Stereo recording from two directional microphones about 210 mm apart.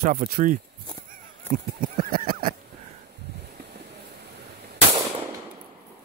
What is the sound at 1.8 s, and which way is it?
Speech, 40° right (ahead or behind).